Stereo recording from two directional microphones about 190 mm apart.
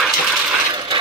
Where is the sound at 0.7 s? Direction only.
25° right (ahead or behind).